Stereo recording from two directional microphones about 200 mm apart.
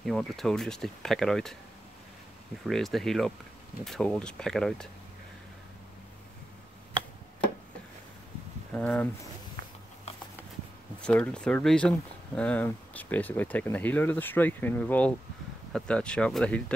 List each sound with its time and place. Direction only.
0.0 s speech: centre (ahead or behind)
2.6 s speech: centre (ahead or behind)
8.7 s speech: 10° left (ahead or behind)
9.6 s a sound: 50° right (ahead or behind)
11.0 s speech: 5° left (ahead or behind)